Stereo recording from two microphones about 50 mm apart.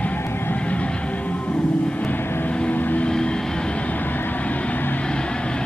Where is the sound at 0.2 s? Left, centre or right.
Left.